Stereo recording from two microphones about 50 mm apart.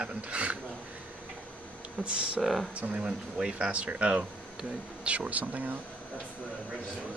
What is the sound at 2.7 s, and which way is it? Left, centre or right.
Speech, right.